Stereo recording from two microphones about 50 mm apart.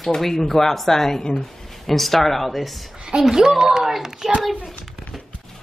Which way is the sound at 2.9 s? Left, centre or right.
Centre.